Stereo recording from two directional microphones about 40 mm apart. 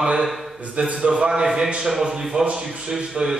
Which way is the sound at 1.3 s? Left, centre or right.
Centre.